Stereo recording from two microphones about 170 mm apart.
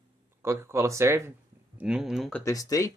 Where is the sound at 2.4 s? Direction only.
20° left (ahead or behind).